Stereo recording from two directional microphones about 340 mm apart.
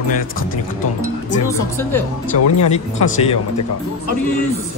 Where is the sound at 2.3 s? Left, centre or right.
Left.